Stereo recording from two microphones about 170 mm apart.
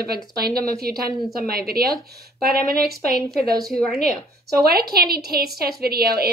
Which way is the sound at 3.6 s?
Centre (ahead or behind).